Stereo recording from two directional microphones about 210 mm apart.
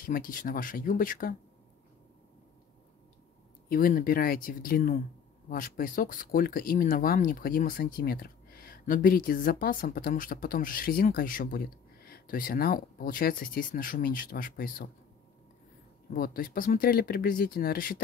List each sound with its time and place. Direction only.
0.0 s speech: 40° left (ahead or behind)
3.6 s speech: 40° left (ahead or behind)
16.1 s speech: 40° left (ahead or behind)